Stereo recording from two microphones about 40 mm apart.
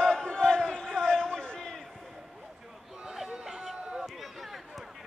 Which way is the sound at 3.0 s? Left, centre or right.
Centre.